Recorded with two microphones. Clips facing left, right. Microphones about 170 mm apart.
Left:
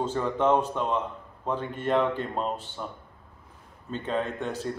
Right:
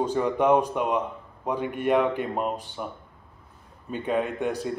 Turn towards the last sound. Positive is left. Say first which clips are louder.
# right 3 dB
turn(degrees=-15)  # may be behind; listen again after turning